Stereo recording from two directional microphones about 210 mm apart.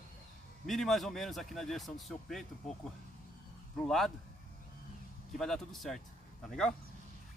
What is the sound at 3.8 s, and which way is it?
Speech, centre (ahead or behind).